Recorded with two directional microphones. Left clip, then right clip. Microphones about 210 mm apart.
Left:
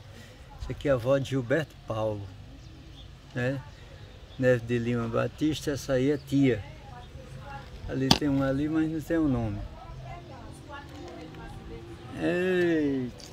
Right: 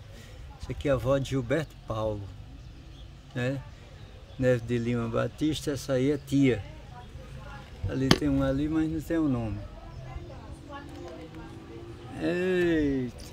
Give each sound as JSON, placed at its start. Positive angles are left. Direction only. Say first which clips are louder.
{"t": 0.7, "sound": "speech", "louder": "left 1 dB", "side_deg": -5}
{"t": 3.3, "sound": "speech", "louder": "left 1 dB", "side_deg": -5}
{"t": 7.9, "sound": "speech", "louder": "even", "side_deg": -10}
{"t": 12.2, "sound": "speech", "louder": "left 1 dB", "side_deg": 0}